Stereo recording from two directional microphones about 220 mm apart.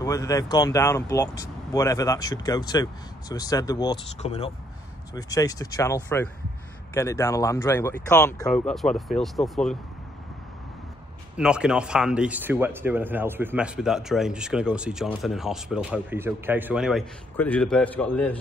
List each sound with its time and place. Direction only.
0.0 s speech: 15° left (ahead or behind)
4.2 s speech: 30° left (ahead or behind)
5.1 s speech: 15° left (ahead or behind)
8.5 s speech: centre (ahead or behind)
11.3 s speech: 5° right (ahead or behind)